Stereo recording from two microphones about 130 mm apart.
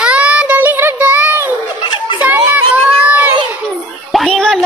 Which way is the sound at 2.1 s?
10° right (ahead or behind).